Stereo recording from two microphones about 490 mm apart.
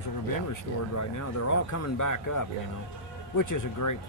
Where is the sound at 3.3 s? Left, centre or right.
Left.